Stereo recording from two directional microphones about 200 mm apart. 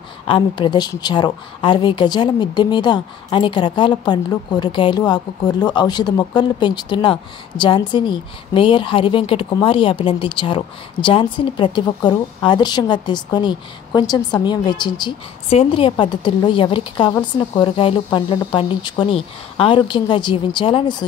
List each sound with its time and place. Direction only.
0.3 s a woman's voice: 20° left (ahead or behind)